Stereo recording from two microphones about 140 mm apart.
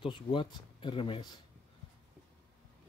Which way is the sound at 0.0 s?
35° left (ahead or behind).